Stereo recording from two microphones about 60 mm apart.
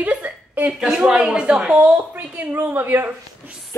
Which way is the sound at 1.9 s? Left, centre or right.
Right.